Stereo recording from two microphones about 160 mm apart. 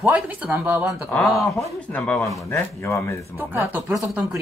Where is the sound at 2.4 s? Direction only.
20° left (ahead or behind).